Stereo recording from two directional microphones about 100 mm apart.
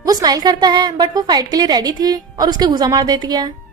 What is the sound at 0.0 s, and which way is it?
A woman's voice, 40° right (ahead or behind).